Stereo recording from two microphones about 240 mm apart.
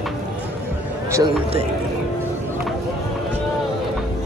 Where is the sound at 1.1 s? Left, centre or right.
Centre.